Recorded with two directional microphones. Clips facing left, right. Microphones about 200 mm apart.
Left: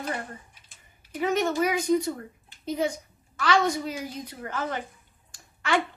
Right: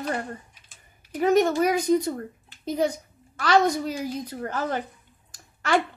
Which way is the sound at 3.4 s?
40° right (ahead or behind).